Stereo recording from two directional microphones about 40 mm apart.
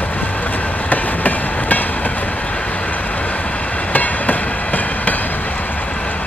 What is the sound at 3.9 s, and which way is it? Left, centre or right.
Train, left.